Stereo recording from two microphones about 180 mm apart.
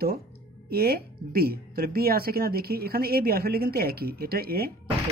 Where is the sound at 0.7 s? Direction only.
60° right (ahead or behind).